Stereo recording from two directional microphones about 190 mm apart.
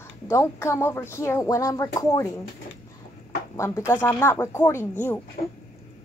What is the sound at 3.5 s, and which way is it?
Speech, 15° left (ahead or behind).